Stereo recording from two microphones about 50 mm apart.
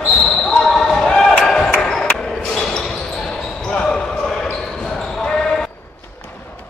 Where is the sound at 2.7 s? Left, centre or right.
Centre.